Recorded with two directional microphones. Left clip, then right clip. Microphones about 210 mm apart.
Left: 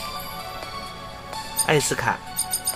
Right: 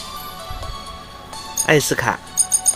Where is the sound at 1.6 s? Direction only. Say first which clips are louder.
Right 5 dB; 20° right (ahead or behind).